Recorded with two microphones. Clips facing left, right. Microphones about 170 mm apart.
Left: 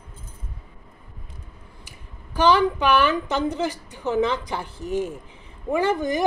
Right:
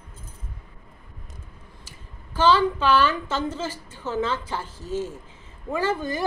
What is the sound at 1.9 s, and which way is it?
A woman's voice, 15° left (ahead or behind).